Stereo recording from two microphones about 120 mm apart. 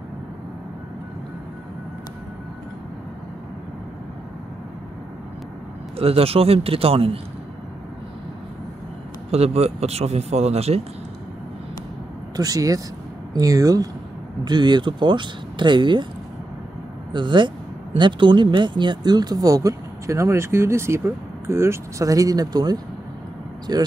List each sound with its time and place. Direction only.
5.9 s a man's voice: 55° right (ahead or behind)
9.3 s speech: 60° right (ahead or behind)
12.4 s speech: 30° right (ahead or behind)
17.1 s speech: 40° right (ahead or behind)